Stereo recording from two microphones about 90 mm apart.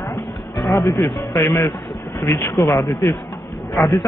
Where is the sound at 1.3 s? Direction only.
30° left (ahead or behind).